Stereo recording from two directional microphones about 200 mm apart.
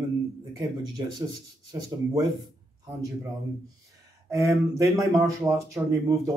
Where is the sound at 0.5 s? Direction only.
20° right (ahead or behind).